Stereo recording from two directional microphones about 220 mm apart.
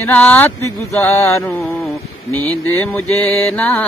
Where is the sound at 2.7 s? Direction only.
10° left (ahead or behind).